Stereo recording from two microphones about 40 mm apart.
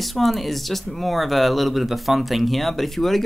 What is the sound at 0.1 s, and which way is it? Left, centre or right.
Speech, centre.